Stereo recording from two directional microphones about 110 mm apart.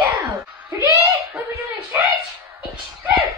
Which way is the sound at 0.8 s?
30° right (ahead or behind).